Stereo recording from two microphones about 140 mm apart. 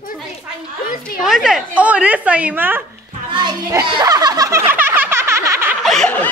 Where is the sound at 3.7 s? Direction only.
30° right (ahead or behind).